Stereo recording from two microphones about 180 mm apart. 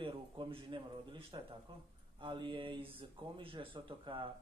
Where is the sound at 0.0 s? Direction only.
30° right (ahead or behind).